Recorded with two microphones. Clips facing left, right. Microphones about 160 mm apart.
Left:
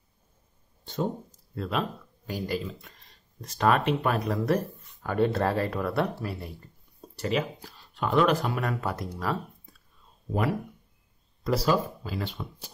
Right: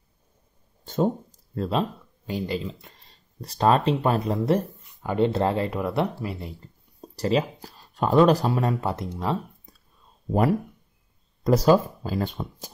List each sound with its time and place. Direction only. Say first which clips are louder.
0.8 s a sound: right 6 dB; 45° right (ahead or behind)
1.7 s speech: right 3 dB; 25° right (ahead or behind)
7.0 s speech: right 5 dB; 35° right (ahead or behind)
11.4 s speech: right 7 dB; 45° right (ahead or behind)